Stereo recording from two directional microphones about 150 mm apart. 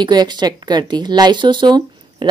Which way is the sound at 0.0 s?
30° right (ahead or behind).